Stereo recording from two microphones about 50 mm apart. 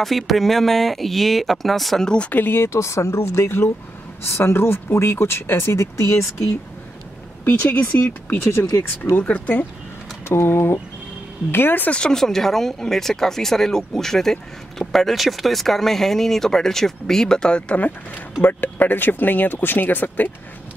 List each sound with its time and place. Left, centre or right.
0.0 s speech: centre
2.0 s speech: left
2.3 s speech: left
2.6 s speech: left
7.4 s speech: left
8.0 s speech: left
9.3 s speech: left
10.2 s speech: left
11.9 s speech: centre
18.4 s speech: left